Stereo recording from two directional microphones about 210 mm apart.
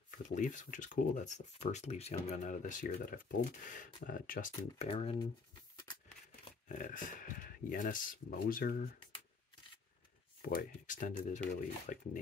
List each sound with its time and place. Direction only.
0.3 s speech: 35° left (ahead or behind)
5.2 s a sound: 20° left (ahead or behind)
6.7 s speech: 40° left (ahead or behind)
10.5 s speech: 40° left (ahead or behind)